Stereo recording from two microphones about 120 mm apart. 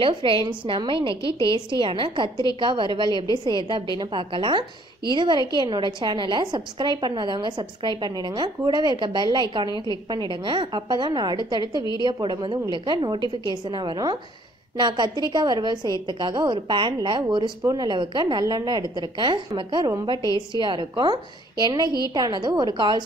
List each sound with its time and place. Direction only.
0.0 s a woman's voice: 45° right (ahead or behind)